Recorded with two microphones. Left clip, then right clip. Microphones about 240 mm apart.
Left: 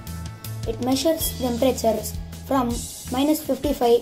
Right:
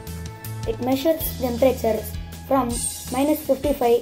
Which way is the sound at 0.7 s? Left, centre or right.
Centre.